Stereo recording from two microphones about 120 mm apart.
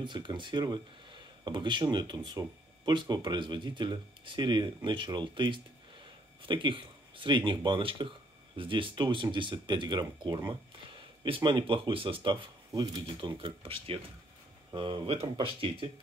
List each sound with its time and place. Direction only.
0.0 s speech: 40° right (ahead or behind)